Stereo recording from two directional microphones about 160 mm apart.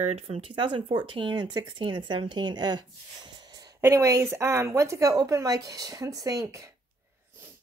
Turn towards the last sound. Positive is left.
turn(degrees=-20)  # may be behind; listen again after turning